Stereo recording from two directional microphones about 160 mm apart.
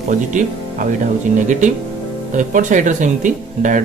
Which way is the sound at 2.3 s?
50° right (ahead or behind).